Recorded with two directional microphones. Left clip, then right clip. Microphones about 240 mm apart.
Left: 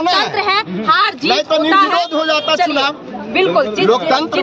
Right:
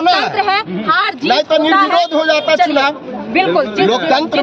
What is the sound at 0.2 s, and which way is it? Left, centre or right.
A woman's voice, centre.